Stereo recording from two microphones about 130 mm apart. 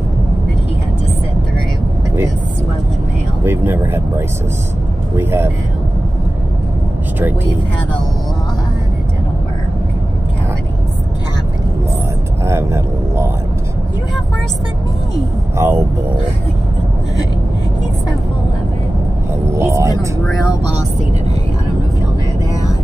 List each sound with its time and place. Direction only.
3.4 s speech: 15° right (ahead or behind)
5.1 s speech: 20° right (ahead or behind)
12.4 s speech: 20° right (ahead or behind)
15.5 s speech: 20° right (ahead or behind)
19.5 s speech: 20° right (ahead or behind)